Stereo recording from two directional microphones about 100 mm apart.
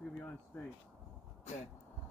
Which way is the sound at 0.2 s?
15° left (ahead or behind).